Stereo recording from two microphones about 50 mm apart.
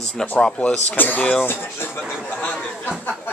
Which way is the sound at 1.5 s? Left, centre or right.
Left.